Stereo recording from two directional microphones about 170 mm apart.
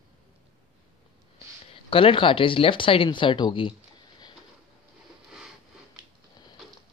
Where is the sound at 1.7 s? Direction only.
30° left (ahead or behind).